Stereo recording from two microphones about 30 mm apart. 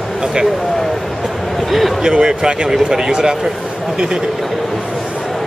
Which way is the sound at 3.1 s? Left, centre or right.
Right.